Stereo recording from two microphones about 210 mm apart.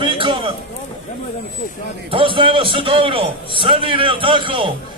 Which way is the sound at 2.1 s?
25° right (ahead or behind).